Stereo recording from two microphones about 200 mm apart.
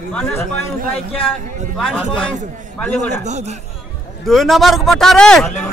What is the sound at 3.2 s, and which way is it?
Speech, 35° right (ahead or behind).